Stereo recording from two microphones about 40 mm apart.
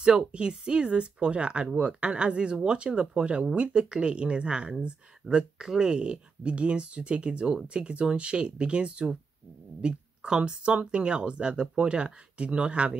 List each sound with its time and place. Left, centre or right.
0.0 s speech: right